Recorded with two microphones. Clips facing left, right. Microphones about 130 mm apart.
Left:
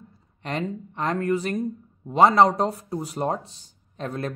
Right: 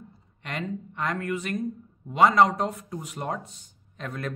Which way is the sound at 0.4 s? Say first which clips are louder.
Left 4 dB; 35° left (ahead or behind).